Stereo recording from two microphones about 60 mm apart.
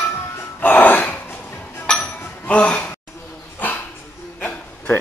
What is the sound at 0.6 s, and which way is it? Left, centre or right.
Music, left.